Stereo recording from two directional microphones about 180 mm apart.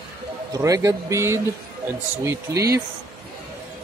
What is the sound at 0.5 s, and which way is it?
Speech, 20° right (ahead or behind).